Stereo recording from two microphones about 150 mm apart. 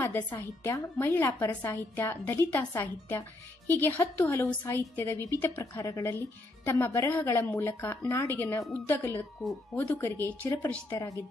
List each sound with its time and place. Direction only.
0.0 s a woman's voice: 15° left (ahead or behind)